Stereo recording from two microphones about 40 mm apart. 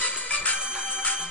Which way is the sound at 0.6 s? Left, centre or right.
Right.